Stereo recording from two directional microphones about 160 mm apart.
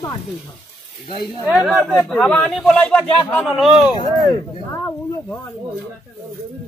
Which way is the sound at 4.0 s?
25° left (ahead or behind).